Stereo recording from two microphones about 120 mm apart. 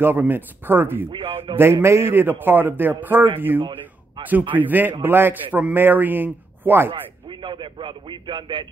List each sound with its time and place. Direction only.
0.0 s a man's voice: 15° right (ahead or behind)
1.1 s speech: 50° right (ahead or behind)
1.6 s a man's voice: 20° right (ahead or behind)
6.9 s speech: 40° right (ahead or behind)